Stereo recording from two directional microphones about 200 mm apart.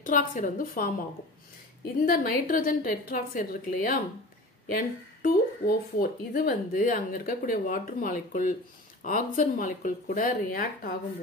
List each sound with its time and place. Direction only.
0.0 s a woman's voice: 40° left (ahead or behind)
2.0 s speech: 45° left (ahead or behind)